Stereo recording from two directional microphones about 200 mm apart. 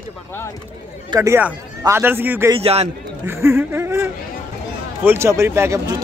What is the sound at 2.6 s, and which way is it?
Speech, 30° right (ahead or behind).